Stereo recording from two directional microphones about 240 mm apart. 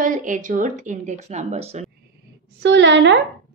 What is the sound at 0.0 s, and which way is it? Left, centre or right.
Speech, right.